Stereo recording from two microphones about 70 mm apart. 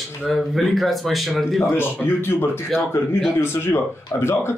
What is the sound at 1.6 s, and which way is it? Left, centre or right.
Speech, left.